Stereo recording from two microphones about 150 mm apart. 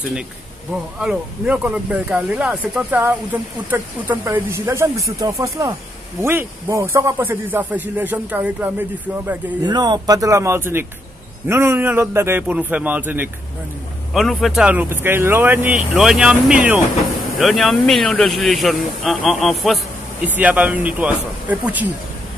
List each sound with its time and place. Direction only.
0.9 s a man's voice: 5° right (ahead or behind)
9.6 s a man's voice: 30° right (ahead or behind); by 13.3 s 10° right (ahead or behind)
14.1 s a man's voice: centre (ahead or behind)
20.2 s a man's voice: 10° right (ahead or behind)